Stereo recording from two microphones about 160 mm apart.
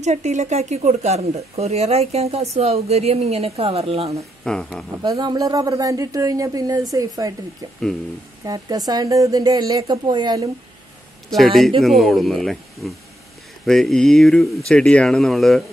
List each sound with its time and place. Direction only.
0.0 s speech: 45° right (ahead or behind)
4.4 s speech: 5° left (ahead or behind)
5.0 s speech: 25° right (ahead or behind)
8.5 s speech: 20° right (ahead or behind)
11.2 s speech: centre (ahead or behind)